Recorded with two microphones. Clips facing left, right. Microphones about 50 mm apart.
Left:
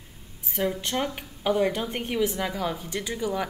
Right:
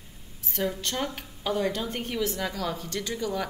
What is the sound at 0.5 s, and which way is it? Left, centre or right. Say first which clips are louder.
Speech: left 3 dB; centre.